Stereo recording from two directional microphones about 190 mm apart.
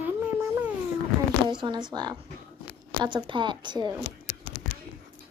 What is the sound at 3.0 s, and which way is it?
Speech, 25° right (ahead or behind).